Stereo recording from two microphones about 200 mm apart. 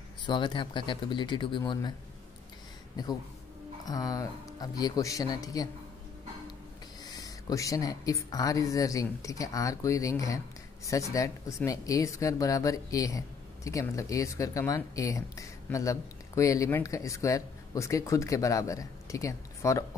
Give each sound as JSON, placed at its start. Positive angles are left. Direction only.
{"t": 0.3, "sound": "speech", "side_deg": 25}
{"t": 3.0, "sound": "speech", "side_deg": 20}
{"t": 7.1, "sound": "speech", "side_deg": 20}